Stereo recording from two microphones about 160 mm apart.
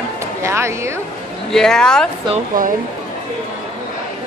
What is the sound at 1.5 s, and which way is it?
Speech, 5° left (ahead or behind).